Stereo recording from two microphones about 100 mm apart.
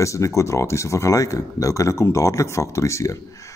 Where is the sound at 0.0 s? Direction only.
30° left (ahead or behind).